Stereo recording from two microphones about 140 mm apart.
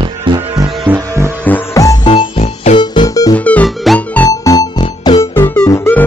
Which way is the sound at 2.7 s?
35° left (ahead or behind).